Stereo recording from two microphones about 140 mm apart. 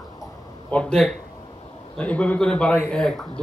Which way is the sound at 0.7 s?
5° left (ahead or behind).